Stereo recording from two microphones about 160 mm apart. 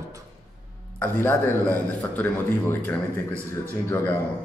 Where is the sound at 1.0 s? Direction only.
15° left (ahead or behind).